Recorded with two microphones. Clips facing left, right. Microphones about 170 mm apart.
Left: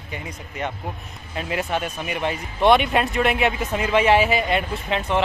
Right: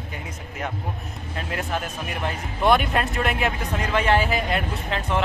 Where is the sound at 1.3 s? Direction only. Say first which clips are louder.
Left 4 dB; 5° left (ahead or behind).